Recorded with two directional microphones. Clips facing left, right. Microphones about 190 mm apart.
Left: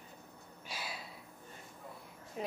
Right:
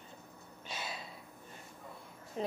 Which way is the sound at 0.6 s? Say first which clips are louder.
Right 2 dB; 25° right (ahead or behind).